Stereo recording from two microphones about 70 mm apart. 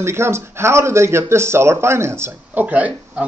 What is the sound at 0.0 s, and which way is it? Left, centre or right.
Speech, right.